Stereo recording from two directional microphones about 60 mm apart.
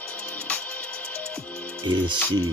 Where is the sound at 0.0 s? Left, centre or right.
Left.